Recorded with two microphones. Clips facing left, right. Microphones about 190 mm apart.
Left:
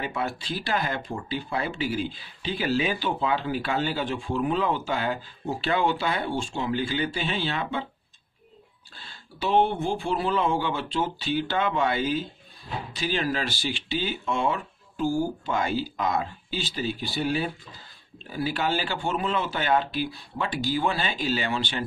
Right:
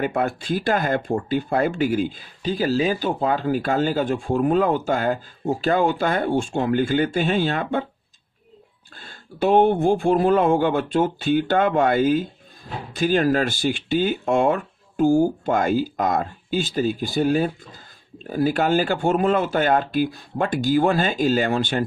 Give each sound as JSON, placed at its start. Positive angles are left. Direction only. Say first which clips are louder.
{"t": 0.0, "sound": "speech", "louder": "right 7 dB", "side_deg": -50}
{"t": 8.9, "sound": "speech", "louder": "right 5 dB", "side_deg": -50}